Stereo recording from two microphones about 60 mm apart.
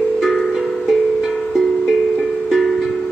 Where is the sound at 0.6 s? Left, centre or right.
Centre.